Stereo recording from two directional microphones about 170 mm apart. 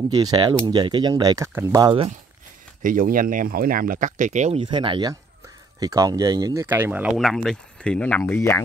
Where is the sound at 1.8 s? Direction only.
30° right (ahead or behind).